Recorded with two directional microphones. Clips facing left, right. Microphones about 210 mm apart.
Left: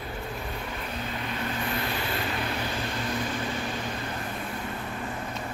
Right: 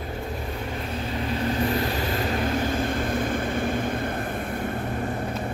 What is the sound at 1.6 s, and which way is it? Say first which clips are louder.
Vehicle: right 6 dB; 40° right (ahead or behind).